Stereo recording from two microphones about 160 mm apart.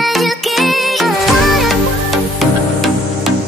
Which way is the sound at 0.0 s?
Centre (ahead or behind).